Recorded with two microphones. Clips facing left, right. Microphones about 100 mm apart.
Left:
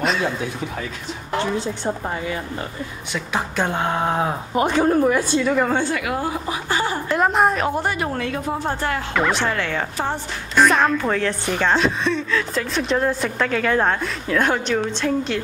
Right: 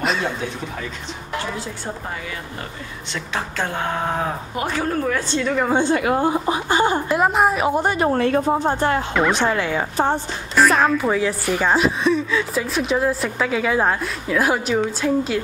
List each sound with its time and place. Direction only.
0.0 s a sound: centre (ahead or behind)
3.1 s speech: 15° left (ahead or behind)
5.3 s a woman's voice: 5° left (ahead or behind)
5.7 s speech: 20° right (ahead or behind)
5.9 s speech: 30° right (ahead or behind)
7.1 s a woman's voice: 5° right (ahead or behind)
7.6 s a woman's voice: 20° right (ahead or behind); by 8.5 s 35° right (ahead or behind)
8.5 s speech: 20° right (ahead or behind)
10.5 s a woman's voice: centre (ahead or behind)